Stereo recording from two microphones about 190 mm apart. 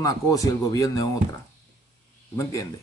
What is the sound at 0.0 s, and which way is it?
Speech, 20° left (ahead or behind).